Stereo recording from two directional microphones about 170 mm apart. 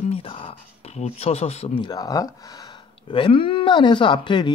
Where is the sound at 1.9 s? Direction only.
20° left (ahead or behind).